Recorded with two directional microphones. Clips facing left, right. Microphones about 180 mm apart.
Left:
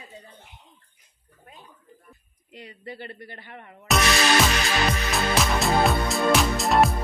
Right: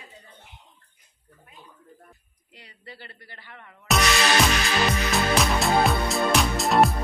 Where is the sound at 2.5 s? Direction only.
20° left (ahead or behind).